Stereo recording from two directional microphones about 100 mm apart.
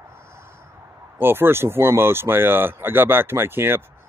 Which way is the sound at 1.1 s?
20° right (ahead or behind).